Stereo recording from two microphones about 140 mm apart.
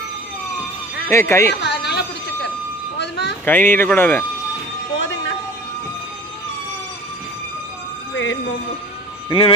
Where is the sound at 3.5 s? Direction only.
15° left (ahead or behind).